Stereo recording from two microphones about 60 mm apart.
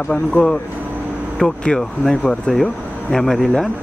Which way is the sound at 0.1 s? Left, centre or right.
Centre.